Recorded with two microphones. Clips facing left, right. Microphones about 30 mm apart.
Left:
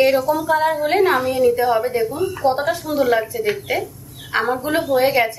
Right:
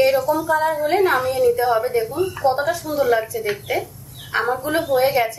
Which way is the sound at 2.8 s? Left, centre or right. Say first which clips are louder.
Left 1 dB; centre.